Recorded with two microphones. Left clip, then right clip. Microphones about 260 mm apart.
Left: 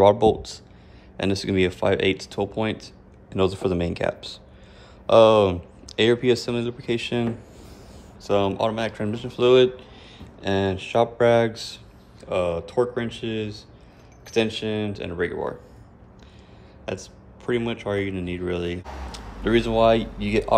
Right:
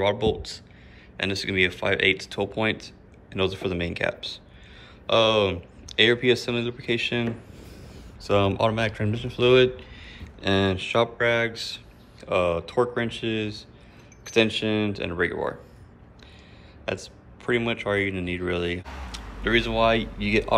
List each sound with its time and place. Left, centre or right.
0.0 s speech: centre
11.1 s speech: centre
16.8 s speech: centre